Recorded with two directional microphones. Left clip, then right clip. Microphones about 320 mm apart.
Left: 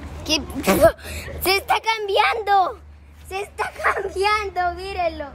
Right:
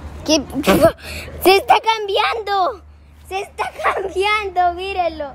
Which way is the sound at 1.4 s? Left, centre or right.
Right.